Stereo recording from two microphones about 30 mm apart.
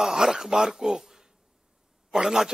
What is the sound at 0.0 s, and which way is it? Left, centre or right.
A man's voice, centre.